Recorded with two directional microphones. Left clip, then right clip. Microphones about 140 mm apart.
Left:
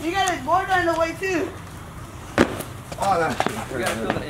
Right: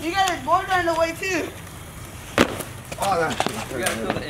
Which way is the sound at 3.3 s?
Centre (ahead or behind).